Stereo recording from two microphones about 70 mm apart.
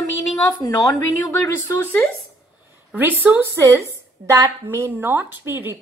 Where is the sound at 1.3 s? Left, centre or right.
Left.